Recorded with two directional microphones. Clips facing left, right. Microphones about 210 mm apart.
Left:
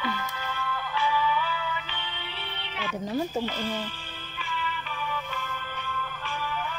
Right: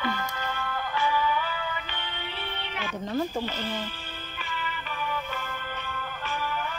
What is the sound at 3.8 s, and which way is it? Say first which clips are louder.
Music: right 1 dB; 50° right (ahead or behind).